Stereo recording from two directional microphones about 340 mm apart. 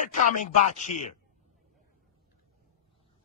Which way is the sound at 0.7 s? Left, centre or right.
Left.